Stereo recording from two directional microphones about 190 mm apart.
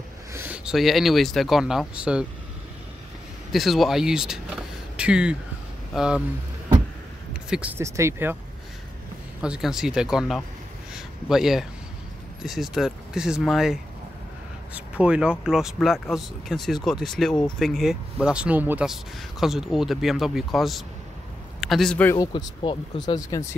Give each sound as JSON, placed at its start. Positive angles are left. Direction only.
{"t": 0.3, "sound": "speech", "side_deg": -10}
{"t": 3.5, "sound": "speech", "side_deg": 0}
{"t": 7.4, "sound": "speech", "side_deg": -5}
{"t": 9.4, "sound": "a man's voice", "side_deg": -5}
{"t": 22.1, "sound": "speech", "side_deg": 20}